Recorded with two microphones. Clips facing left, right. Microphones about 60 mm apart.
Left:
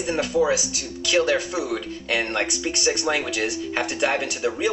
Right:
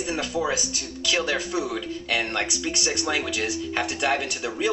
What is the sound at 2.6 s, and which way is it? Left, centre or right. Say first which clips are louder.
Speech: left 3 dB; centre.